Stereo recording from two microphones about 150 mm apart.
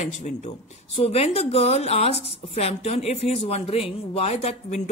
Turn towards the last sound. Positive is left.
turn(degrees=50)  # may be behind; listen again after turning